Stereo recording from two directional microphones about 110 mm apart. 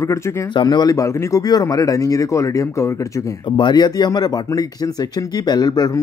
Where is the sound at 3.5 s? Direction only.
40° left (ahead or behind).